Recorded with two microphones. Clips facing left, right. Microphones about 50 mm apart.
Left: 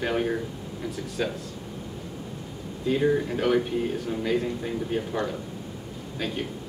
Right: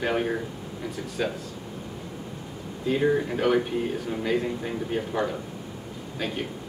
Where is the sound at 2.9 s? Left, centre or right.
Centre.